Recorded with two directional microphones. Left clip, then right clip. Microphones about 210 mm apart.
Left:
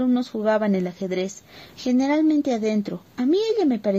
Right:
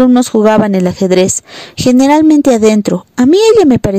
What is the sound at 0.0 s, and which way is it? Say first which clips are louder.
Speech: right 15 dB; 40° right (ahead or behind).